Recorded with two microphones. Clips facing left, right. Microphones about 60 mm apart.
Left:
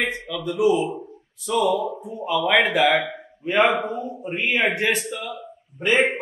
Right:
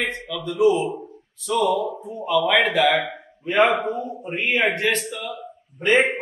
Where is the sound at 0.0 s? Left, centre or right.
Centre.